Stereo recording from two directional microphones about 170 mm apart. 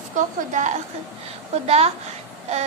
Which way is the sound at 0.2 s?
50° right (ahead or behind).